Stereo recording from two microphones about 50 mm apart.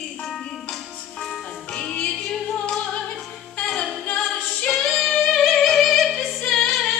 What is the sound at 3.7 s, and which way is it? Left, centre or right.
Music, centre.